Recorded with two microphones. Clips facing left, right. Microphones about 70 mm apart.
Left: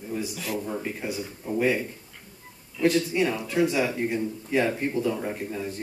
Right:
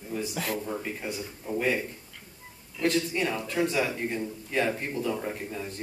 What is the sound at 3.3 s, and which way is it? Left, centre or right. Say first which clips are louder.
Speech: left 3 dB; centre.